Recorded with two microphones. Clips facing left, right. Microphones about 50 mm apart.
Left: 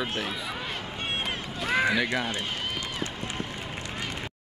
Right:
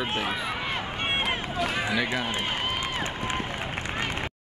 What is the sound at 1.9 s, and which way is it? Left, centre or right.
Speech, centre.